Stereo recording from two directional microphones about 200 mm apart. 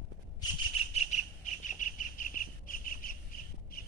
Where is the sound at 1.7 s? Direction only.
40° left (ahead or behind).